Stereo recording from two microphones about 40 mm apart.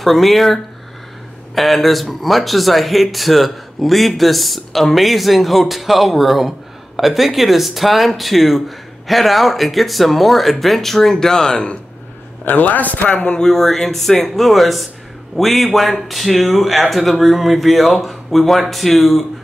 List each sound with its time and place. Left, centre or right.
0.0 s speech: centre
12.4 s a man's voice: left
13.1 s speech: left
13.4 s speech: centre